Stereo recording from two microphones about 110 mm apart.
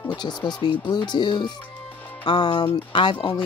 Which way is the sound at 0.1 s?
40° left (ahead or behind).